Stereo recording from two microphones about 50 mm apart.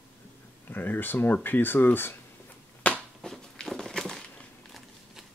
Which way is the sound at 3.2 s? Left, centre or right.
Centre.